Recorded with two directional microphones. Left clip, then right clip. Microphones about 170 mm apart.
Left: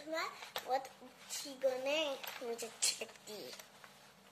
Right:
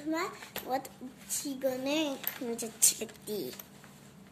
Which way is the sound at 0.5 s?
20° right (ahead or behind).